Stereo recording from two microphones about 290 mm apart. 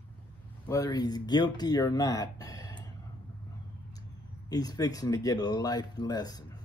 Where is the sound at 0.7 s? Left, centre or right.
Centre.